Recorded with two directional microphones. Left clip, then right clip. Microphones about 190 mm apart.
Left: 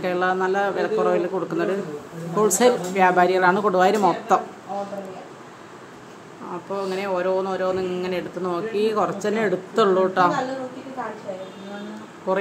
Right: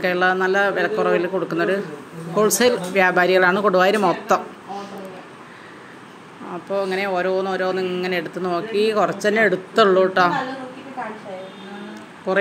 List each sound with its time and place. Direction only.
0.0 s speech: 10° right (ahead or behind)
4.7 s a sound: centre (ahead or behind)
6.7 s speech: 10° right (ahead or behind)